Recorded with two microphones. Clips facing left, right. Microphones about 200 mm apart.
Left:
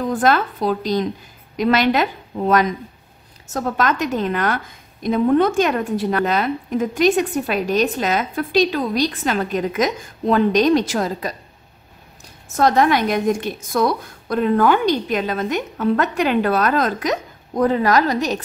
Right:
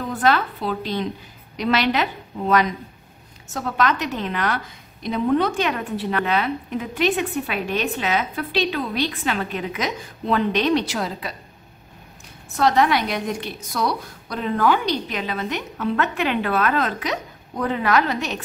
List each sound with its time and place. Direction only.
0.1 s a woman's voice: 45° left (ahead or behind)
12.5 s a woman's voice: 45° left (ahead or behind)